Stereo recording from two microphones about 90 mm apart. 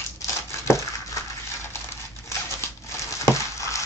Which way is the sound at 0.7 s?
35° left (ahead or behind).